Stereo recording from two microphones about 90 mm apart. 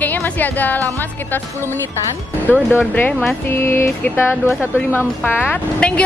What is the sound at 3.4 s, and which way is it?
A woman's voice, 25° left (ahead or behind).